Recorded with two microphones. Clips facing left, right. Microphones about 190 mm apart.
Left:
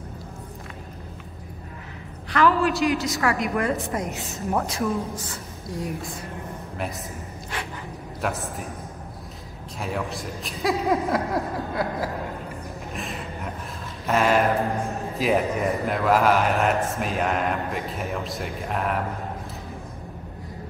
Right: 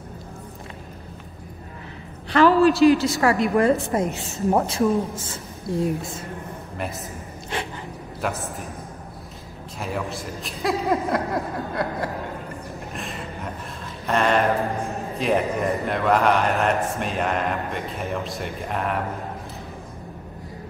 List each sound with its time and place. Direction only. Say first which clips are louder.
2.3 s a man's voice: right 5 dB; 30° right (ahead or behind)
8.2 s a man's voice: even; centre (ahead or behind)
9.8 s a man's voice: even; centre (ahead or behind)
12.9 s a sound: left 1 dB; centre (ahead or behind)
14.0 s a man's voice: even; 5° left (ahead or behind)